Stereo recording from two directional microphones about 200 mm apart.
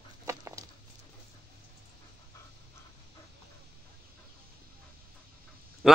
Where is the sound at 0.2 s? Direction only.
15° right (ahead or behind).